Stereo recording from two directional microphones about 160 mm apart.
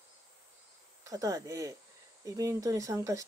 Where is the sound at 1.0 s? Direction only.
20° right (ahead or behind).